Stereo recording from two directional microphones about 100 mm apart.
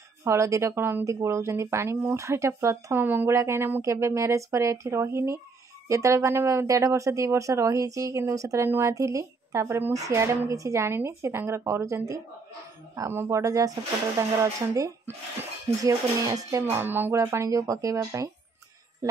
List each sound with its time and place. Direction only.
0.2 s speech: 30° right (ahead or behind)
16.7 s speech: 20° right (ahead or behind)